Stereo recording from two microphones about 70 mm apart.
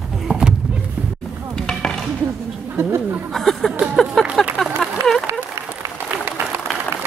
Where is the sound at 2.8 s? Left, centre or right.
Right.